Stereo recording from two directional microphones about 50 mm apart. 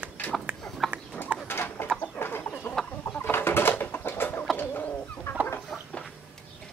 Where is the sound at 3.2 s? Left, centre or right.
Left.